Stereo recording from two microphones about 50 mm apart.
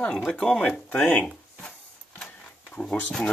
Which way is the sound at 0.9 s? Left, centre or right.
Centre.